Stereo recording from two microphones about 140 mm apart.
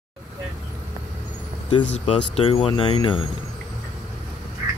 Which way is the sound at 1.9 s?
45° left (ahead or behind).